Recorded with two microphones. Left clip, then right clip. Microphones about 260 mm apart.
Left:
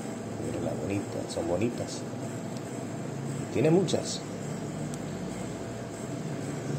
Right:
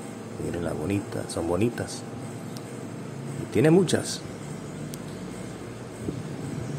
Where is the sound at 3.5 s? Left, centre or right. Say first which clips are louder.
Right 4 dB; right.